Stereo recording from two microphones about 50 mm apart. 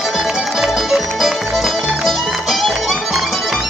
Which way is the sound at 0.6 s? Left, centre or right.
Centre.